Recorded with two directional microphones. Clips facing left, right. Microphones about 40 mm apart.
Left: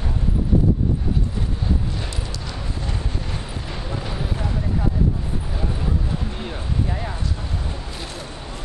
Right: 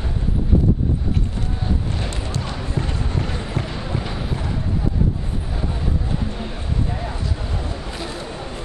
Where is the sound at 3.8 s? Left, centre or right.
Centre.